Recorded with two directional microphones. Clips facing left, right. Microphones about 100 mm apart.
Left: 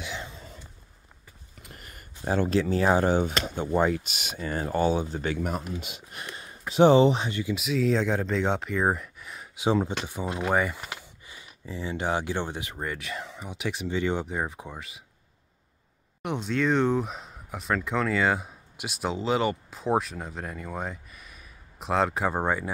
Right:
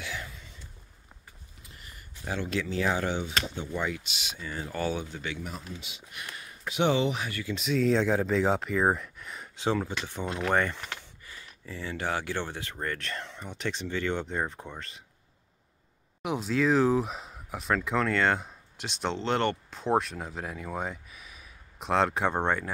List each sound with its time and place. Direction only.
0.0 s a sound: 25° left (ahead or behind)
1.6 s a sound: 55° left (ahead or behind)
2.2 s speech: 40° left (ahead or behind)
4.7 s speech: 30° left (ahead or behind); by 6.0 s 50° left (ahead or behind)
6.1 s a sound: 30° left (ahead or behind)
6.7 s speech: 35° left (ahead or behind)
7.5 s speech: 5° left (ahead or behind)
9.6 s speech: 20° left (ahead or behind)
16.2 s speech: centre (ahead or behind)